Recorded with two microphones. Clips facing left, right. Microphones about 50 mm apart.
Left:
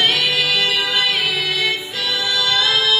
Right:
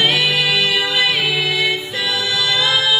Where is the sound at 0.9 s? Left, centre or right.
Centre.